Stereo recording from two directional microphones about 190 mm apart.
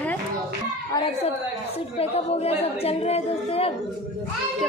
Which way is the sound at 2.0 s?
30° left (ahead or behind).